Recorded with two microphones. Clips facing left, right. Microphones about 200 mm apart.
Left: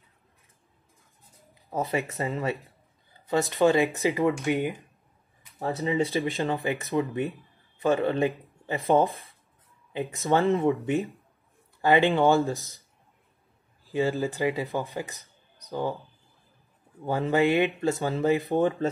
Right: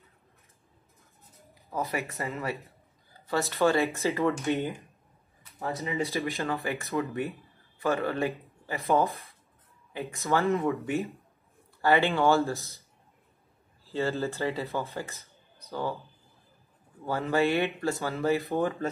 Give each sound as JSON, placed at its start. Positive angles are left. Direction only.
{"t": 1.7, "sound": "speech", "side_deg": 25}
{"t": 3.3, "sound": "speech", "side_deg": 15}
{"t": 5.6, "sound": "speech", "side_deg": 30}
{"t": 13.8, "sound": "speech", "side_deg": 15}
{"t": 17.0, "sound": "speech", "side_deg": 20}